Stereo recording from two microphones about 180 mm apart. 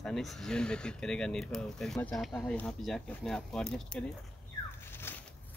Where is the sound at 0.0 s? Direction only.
Centre (ahead or behind).